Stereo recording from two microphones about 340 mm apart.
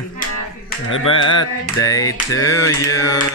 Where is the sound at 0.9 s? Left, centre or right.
Left.